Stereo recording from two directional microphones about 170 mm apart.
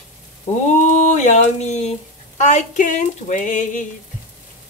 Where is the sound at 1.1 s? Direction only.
40° left (ahead or behind).